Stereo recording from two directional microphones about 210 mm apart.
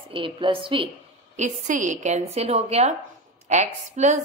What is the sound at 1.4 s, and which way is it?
A woman's voice, 35° right (ahead or behind).